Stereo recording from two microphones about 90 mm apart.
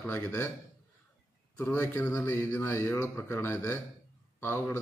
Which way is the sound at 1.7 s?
30° left (ahead or behind).